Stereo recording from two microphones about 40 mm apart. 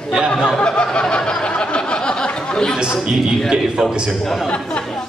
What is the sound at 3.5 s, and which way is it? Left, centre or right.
Speech, centre.